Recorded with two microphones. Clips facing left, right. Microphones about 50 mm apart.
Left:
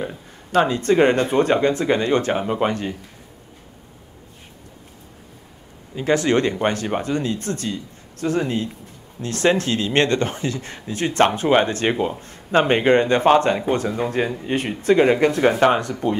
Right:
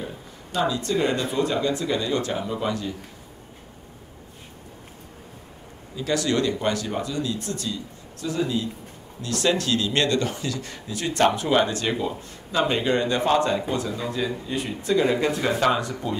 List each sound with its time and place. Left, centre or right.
0.0 s speech: left
5.9 s speech: left